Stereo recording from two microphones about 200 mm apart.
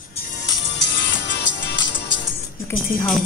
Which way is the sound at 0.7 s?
60° left (ahead or behind).